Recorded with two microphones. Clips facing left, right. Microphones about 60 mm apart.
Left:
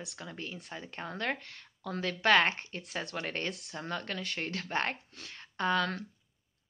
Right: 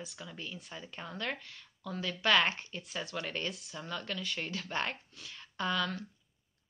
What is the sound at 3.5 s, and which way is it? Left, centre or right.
Speech, left.